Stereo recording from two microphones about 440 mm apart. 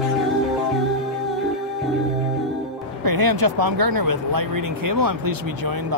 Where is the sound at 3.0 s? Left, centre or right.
Right.